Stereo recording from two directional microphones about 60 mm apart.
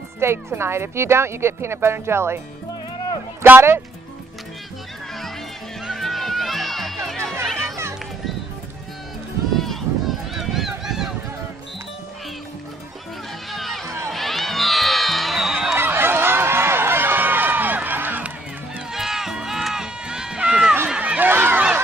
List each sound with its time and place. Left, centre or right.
0.2 s speech: right
3.4 s a man's voice: right
5.9 s music: centre
9.6 s run: centre
13.5 s music: centre
15.8 s a sound: right
18.9 s run: centre
21.0 s a sound: right
21.3 s a sound: right